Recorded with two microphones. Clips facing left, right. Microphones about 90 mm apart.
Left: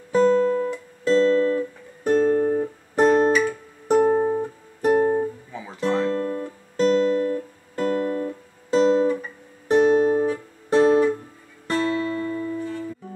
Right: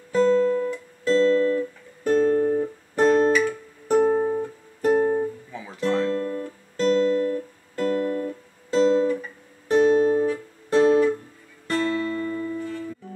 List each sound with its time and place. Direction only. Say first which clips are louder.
0.1 s guitar: left 1 dB; 15° left (ahead or behind)
2.1 s music: even; 10° left (ahead or behind)
5.8 s guitar: left 1 dB; 20° left (ahead or behind)
10.2 s music: even; 20° left (ahead or behind)